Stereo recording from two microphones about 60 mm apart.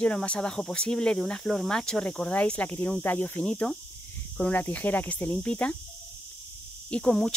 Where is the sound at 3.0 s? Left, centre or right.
Left.